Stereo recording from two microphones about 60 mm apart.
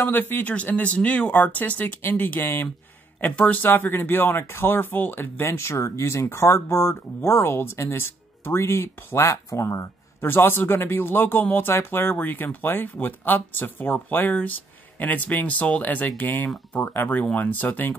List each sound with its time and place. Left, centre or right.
0.0 s speech: left
5.8 s speech: left
10.2 s speech: left